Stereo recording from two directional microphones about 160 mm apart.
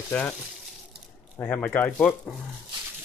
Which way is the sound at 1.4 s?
5° left (ahead or behind).